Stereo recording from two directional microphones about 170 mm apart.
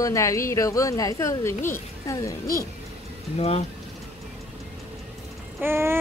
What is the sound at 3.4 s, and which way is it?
Speech, 35° left (ahead or behind).